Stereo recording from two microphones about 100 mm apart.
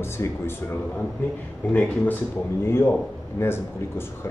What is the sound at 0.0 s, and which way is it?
Speech, 25° left (ahead or behind).